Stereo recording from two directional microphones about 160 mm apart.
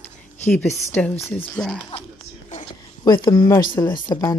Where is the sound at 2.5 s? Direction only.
50° left (ahead or behind).